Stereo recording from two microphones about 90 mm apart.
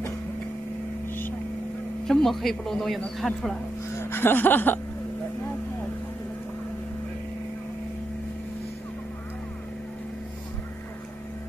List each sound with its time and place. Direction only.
2.0 s a man's voice: 5° left (ahead or behind)
3.9 s music: 25° left (ahead or behind)